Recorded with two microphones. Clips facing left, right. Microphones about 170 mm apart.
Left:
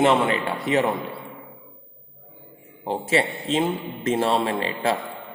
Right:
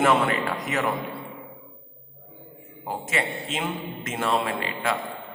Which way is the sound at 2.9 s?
30° left (ahead or behind).